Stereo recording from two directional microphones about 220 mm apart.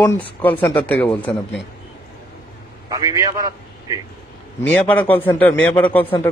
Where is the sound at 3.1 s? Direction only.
15° right (ahead or behind).